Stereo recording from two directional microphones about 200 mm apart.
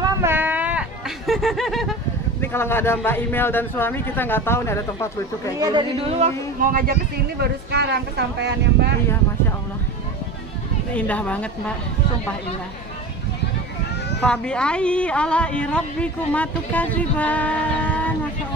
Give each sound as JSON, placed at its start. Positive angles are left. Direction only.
{"t": 0.0, "sound": "a sound", "side_deg": -10}
{"t": 2.4, "sound": "a man's voice", "side_deg": 10}
{"t": 5.6, "sound": "speech", "side_deg": -20}
{"t": 10.9, "sound": "a man's voice", "side_deg": 5}
{"t": 14.2, "sound": "a woman's voice", "side_deg": 5}